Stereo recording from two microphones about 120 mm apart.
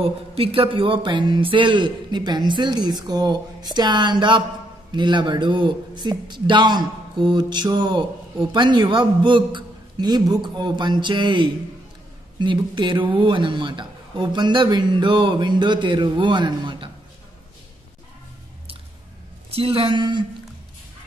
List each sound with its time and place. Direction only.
0.0 s a man's voice: 50° right (ahead or behind)
19.5 s speech: 50° right (ahead or behind)